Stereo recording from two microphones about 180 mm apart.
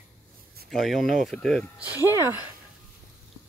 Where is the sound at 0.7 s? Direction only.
Centre (ahead or behind).